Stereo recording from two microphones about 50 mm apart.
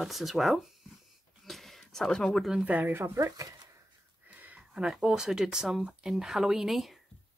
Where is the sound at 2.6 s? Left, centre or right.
Right.